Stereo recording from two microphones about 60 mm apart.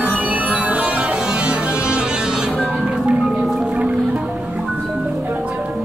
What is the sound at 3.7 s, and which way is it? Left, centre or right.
Music, centre.